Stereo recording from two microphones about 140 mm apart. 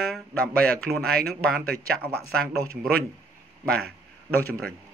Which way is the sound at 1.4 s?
10° left (ahead or behind).